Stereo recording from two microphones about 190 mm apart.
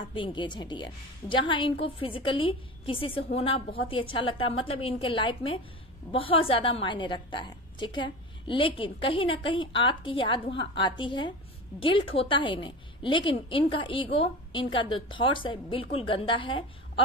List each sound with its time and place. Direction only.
0.1 s a woman's voice: 25° left (ahead or behind)